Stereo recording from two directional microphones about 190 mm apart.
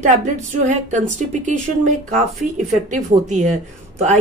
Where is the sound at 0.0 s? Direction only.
40° right (ahead or behind).